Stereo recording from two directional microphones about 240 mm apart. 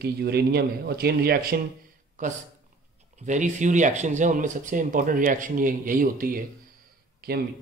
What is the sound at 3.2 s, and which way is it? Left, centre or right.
Speech, right.